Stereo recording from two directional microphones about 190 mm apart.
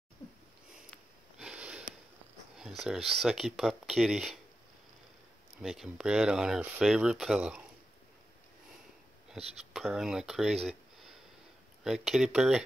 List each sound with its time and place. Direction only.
1.4 s sniff: 5° right (ahead or behind)
2.5 s speech: centre (ahead or behind)
5.6 s speech: centre (ahead or behind)
9.8 s speech: centre (ahead or behind)
11.8 s speech: centre (ahead or behind)